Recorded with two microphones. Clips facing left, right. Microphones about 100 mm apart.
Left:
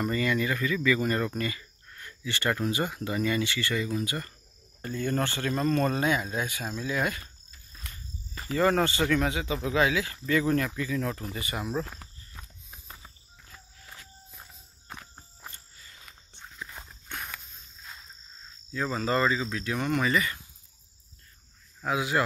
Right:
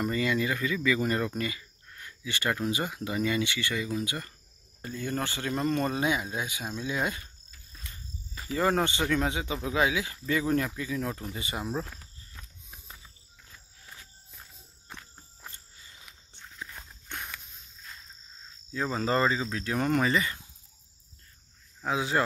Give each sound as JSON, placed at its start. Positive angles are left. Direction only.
{"t": 0.0, "sound": "speech", "side_deg": -15}
{"t": 4.8, "sound": "speech", "side_deg": -5}
{"t": 8.5, "sound": "speech", "side_deg": -15}
{"t": 15.5, "sound": "a sound", "side_deg": -20}
{"t": 16.6, "sound": "dog", "side_deg": 10}
{"t": 18.7, "sound": "speech", "side_deg": -25}
{"t": 20.1, "sound": "speech", "side_deg": -25}
{"t": 21.8, "sound": "speech", "side_deg": -30}